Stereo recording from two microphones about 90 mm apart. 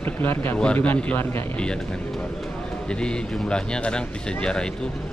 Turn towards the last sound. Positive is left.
turn(degrees=10)  # may be behind; listen again after turning